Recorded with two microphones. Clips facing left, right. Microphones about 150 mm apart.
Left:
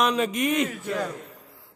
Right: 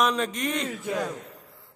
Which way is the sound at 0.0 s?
5° left (ahead or behind).